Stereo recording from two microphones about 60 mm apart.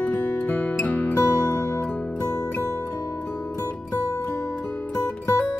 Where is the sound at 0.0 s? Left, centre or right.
Left.